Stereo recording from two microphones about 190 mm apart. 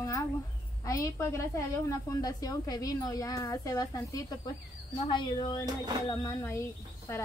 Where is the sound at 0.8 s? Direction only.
15° left (ahead or behind).